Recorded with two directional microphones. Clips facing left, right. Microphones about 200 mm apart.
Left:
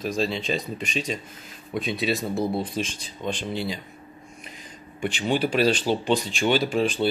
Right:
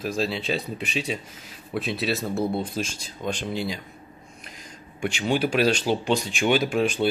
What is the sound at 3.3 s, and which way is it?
Speech, 45° right (ahead or behind).